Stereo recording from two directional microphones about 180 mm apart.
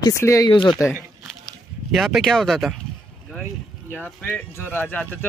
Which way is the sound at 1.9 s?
Centre (ahead or behind).